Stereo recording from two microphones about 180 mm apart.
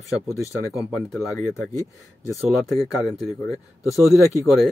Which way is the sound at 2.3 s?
Centre (ahead or behind).